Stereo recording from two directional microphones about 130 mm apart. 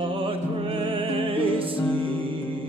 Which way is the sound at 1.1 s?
45° right (ahead or behind).